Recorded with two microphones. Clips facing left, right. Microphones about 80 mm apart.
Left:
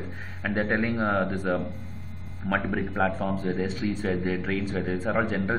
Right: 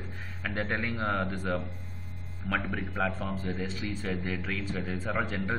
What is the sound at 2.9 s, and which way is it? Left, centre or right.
A man's voice, centre.